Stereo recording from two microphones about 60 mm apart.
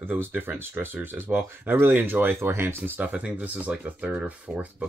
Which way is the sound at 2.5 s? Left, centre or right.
Right.